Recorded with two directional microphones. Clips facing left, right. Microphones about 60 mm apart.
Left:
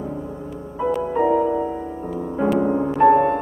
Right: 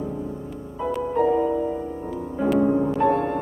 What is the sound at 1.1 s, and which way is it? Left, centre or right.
Music, left.